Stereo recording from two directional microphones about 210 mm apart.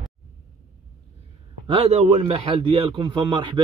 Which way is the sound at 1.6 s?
30° right (ahead or behind).